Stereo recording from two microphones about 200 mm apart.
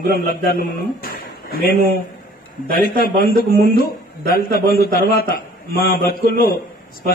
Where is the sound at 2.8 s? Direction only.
45° left (ahead or behind).